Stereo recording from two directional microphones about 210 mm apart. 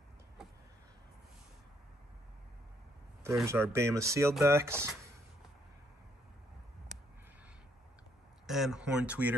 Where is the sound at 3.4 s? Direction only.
10° right (ahead or behind).